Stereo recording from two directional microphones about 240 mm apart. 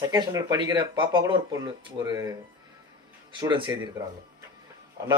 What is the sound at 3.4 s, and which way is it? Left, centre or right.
Speech, centre.